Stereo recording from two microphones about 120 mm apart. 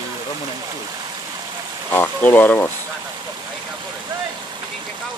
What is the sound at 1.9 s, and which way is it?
Speech, 15° left (ahead or behind).